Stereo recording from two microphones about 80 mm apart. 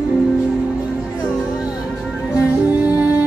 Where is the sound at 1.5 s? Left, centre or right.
Centre.